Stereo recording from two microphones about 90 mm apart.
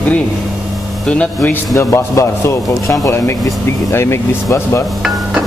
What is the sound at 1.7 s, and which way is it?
A man's voice, 30° left (ahead or behind).